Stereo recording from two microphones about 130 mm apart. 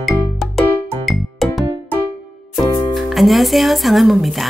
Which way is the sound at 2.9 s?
Centre (ahead or behind).